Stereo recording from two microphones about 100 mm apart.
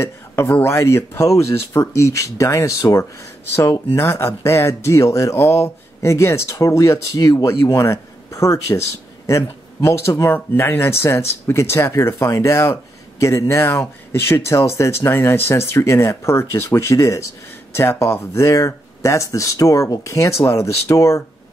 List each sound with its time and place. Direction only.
0.0 s speech: 25° left (ahead or behind)